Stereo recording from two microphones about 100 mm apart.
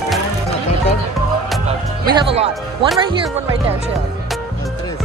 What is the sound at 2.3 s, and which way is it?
Speech, 85° right.